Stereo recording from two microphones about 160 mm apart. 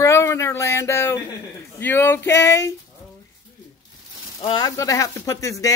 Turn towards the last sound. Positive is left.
turn(degrees=20)  # may be behind; listen again after turning